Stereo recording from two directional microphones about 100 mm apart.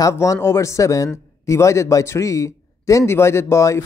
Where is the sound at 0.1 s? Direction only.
30° left (ahead or behind).